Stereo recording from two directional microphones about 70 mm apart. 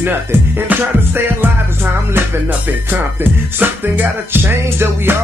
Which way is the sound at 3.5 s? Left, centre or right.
Right.